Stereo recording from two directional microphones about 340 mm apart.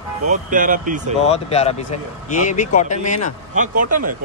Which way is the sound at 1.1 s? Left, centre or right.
Centre.